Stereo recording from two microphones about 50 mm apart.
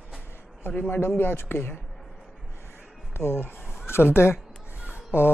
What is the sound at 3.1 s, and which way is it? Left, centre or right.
Speech, left.